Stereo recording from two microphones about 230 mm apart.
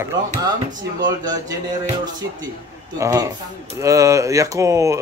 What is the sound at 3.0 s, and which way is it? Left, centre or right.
Speech, centre.